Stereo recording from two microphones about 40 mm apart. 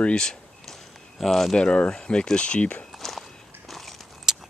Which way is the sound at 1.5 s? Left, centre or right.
Left.